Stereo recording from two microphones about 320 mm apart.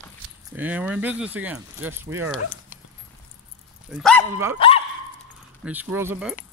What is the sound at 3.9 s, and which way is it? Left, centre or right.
Speech, centre.